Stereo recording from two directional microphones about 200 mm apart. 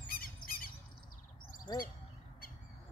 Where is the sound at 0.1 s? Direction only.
45° left (ahead or behind).